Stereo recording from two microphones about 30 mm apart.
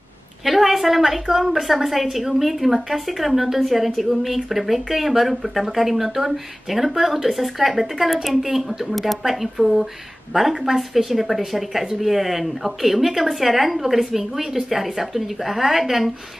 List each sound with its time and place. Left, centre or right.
0.5 s a woman's voice: centre